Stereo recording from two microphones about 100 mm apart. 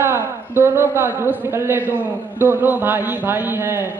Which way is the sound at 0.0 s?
20° right (ahead or behind).